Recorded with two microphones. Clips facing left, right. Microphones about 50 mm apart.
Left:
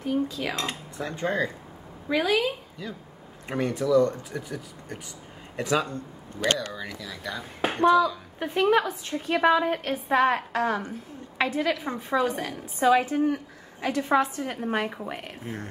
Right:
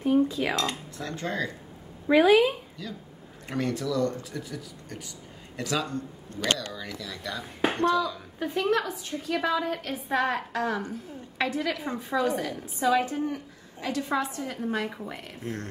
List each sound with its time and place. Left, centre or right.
0.0 s speech: centre
0.6 s speech: left
2.0 s speech: centre
2.8 s speech: left
6.7 s a woman's voice: centre
8.4 s speech: left
10.0 s a woman's voice: centre
12.8 s a woman's voice: left
15.4 s a woman's voice: centre